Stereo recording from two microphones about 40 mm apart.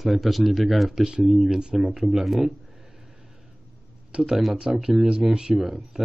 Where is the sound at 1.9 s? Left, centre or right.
Centre.